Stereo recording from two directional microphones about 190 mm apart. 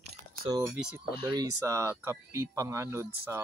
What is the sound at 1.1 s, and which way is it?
Speech, 20° right (ahead or behind).